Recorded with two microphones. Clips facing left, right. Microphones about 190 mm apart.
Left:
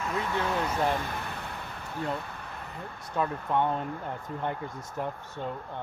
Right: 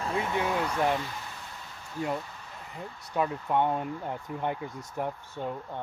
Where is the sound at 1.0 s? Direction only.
60° left (ahead or behind).